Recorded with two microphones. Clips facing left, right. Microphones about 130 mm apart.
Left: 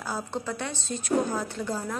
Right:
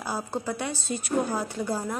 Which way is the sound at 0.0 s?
10° right (ahead or behind).